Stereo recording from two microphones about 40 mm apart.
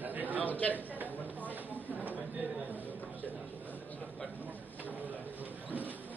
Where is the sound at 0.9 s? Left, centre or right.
Right.